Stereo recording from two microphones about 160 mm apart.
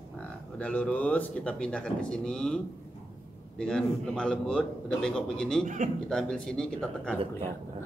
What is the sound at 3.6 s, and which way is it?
A man's voice, 5° left (ahead or behind).